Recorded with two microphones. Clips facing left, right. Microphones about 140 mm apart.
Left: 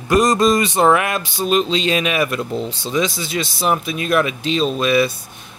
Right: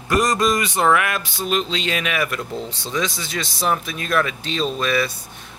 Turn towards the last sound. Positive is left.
turn(degrees=20)  # may be behind; listen again after turning